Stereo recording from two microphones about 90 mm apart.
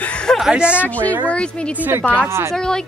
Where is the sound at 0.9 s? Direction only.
15° left (ahead or behind).